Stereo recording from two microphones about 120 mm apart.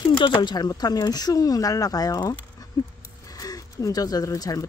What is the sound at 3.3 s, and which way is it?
Speech, 30° left (ahead or behind).